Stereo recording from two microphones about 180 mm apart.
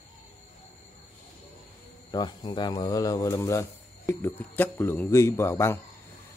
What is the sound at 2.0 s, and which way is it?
Speech, 25° left (ahead or behind).